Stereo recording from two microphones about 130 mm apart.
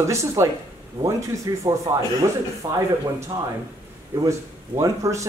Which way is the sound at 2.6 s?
50° right (ahead or behind).